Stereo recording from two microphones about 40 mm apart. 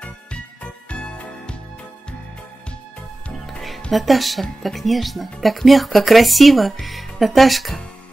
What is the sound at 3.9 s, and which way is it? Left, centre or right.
Speech, centre.